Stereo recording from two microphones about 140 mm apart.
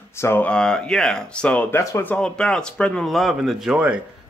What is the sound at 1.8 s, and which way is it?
Speech, 25° left (ahead or behind).